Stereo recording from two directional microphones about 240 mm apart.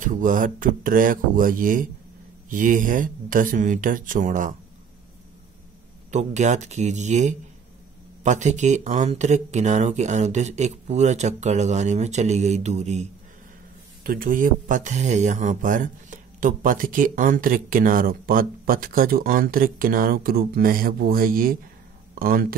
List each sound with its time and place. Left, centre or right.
0.0 s speech: right
6.1 s speech: right